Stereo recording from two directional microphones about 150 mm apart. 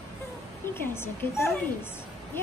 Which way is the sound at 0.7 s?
15° left (ahead or behind).